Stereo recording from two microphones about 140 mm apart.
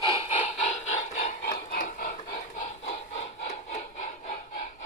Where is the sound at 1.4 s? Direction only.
80° left.